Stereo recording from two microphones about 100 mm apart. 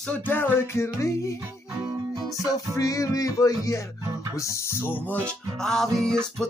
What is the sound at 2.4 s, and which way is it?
Music, 35° left (ahead or behind).